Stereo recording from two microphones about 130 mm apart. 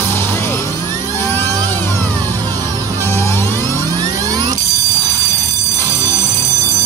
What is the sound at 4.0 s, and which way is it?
Music, 30° right (ahead or behind).